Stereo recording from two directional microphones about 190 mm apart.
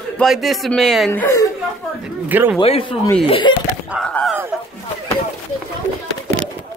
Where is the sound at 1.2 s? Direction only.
15° left (ahead or behind).